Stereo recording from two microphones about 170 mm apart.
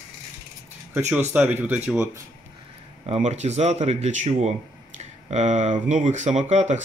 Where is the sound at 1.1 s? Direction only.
10° right (ahead or behind).